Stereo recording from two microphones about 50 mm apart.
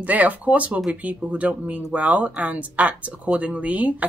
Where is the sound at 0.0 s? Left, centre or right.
Right.